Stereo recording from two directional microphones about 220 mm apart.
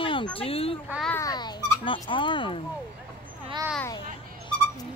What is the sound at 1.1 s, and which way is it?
A child's voice, 15° left (ahead or behind).